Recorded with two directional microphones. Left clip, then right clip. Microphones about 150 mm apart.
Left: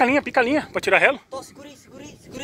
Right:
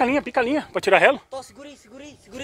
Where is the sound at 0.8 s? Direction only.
25° right (ahead or behind).